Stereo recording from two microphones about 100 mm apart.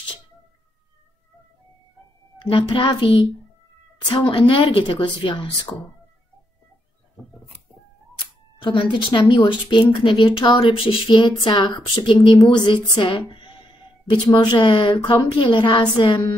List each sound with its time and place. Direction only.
2.3 s speech: 55° left (ahead or behind)
8.6 s a woman's voice: 55° left (ahead or behind)
13.3 s a sound: 55° left (ahead or behind)
14.2 s a woman's voice: 45° left (ahead or behind)